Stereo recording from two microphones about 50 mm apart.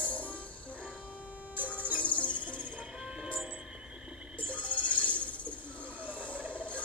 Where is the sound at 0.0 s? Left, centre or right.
Left.